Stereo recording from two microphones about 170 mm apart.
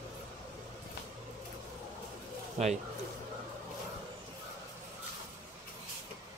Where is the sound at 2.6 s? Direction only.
40° right (ahead or behind).